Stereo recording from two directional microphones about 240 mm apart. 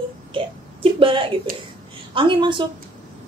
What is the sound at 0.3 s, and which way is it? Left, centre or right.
Wail, right.